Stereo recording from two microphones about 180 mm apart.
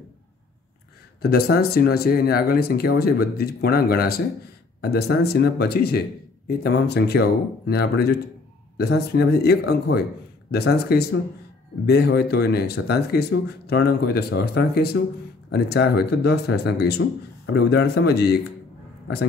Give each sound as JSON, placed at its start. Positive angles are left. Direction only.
{"t": 1.2, "sound": "speech", "side_deg": 60}